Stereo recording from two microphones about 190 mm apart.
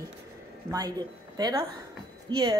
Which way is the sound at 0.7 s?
20° right (ahead or behind).